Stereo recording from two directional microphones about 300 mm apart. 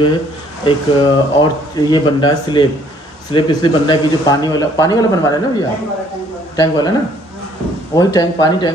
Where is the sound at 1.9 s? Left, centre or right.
Centre.